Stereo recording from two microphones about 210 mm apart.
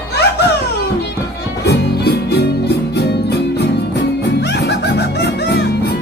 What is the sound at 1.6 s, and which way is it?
Music, 50° left (ahead or behind).